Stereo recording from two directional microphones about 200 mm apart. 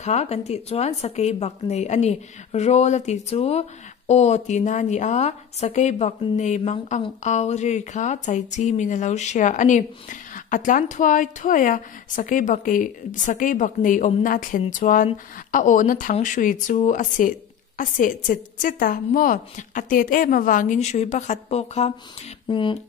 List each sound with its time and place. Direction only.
0.0 s a woman's voice: 35° left (ahead or behind)